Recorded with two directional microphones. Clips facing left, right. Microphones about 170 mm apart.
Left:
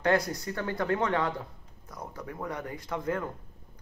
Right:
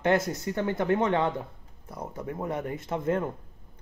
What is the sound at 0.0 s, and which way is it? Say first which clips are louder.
Speech: right 2 dB; 20° right (ahead or behind).